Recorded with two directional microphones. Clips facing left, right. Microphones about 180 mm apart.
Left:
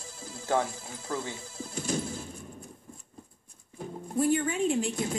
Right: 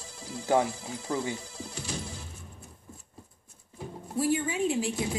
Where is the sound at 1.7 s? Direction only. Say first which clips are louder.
Left 7 dB; 50° left (ahead or behind).